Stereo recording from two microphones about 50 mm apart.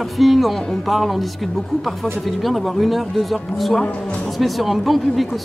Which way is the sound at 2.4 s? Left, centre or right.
Centre.